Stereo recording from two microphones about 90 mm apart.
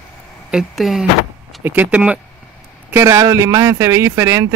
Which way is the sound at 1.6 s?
20° right (ahead or behind).